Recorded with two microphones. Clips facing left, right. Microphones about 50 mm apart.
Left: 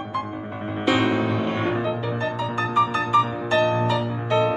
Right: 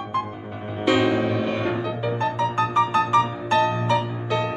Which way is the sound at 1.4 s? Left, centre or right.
Left.